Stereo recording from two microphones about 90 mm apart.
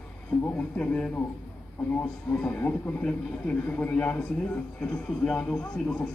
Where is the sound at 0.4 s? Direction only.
20° left (ahead or behind).